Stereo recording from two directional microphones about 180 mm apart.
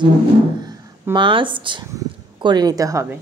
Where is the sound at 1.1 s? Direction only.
30° right (ahead or behind).